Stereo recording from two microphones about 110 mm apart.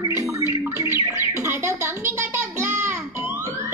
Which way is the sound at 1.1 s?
20° right (ahead or behind).